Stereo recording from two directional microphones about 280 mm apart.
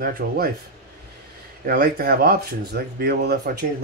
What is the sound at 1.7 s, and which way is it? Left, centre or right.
Speech, right.